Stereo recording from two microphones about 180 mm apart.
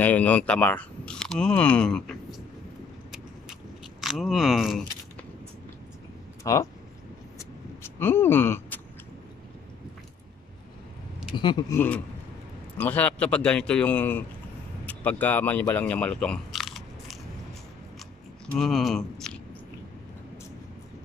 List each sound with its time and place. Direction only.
0.0 s speech: 10° left (ahead or behind)
4.0 s speech: centre (ahead or behind)
6.4 s speech: 20° left (ahead or behind)
7.3 s vehicle: 15° left (ahead or behind)
11.3 s speech: 25° left (ahead or behind)
11.7 s speech: 10° left (ahead or behind)
18.5 s speech: centre (ahead or behind)